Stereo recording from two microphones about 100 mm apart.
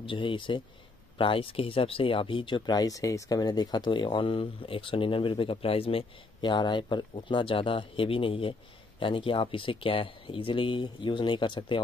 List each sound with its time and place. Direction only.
0.0 s speech: 60° left (ahead or behind)
6.4 s speech: 50° left (ahead or behind)